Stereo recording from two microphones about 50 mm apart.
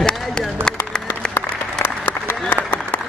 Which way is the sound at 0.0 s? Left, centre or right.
Centre.